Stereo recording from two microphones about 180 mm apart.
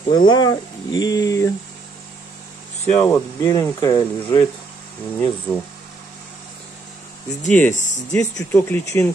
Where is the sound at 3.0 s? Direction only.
20° left (ahead or behind).